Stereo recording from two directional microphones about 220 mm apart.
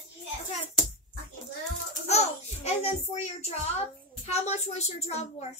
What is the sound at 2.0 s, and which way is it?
A child's voice, 30° left (ahead or behind).